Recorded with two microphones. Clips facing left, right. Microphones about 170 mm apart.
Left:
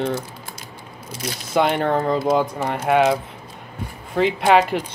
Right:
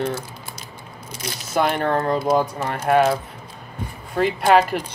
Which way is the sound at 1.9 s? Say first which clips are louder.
Left 1 dB; 5° left (ahead or behind).